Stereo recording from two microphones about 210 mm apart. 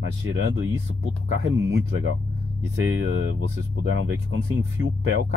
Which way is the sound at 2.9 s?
70° right (ahead or behind).